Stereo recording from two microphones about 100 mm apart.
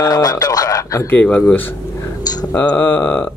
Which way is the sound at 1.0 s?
15° left (ahead or behind).